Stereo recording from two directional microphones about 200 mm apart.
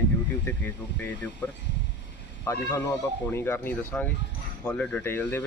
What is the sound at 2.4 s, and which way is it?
Speech, 15° left (ahead or behind).